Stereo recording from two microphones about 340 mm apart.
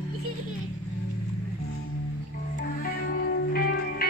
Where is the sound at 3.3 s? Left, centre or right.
Left.